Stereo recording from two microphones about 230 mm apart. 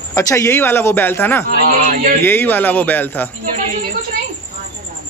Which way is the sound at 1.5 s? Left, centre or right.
Right.